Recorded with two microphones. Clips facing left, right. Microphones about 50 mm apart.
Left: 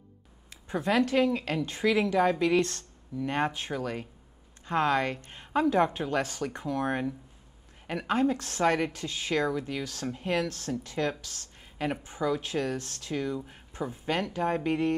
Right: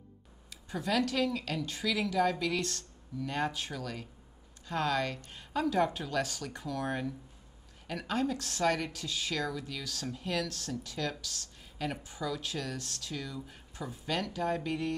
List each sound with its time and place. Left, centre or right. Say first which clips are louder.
0.5 s a woman's voice: left 5 dB; left